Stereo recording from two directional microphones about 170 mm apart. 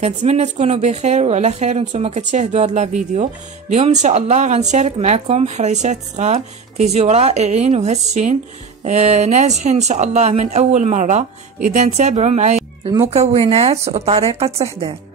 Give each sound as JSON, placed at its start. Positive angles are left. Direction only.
{"t": 0.0, "sound": "speech", "side_deg": -40}